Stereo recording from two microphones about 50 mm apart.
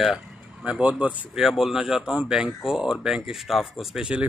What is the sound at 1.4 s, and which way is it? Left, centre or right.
Speech, centre.